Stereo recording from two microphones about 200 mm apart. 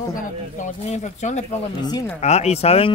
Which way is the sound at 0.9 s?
35° left (ahead or behind).